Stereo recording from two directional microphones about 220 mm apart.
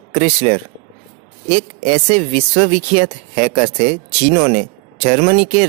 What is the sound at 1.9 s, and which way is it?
Speech, 30° right (ahead or behind).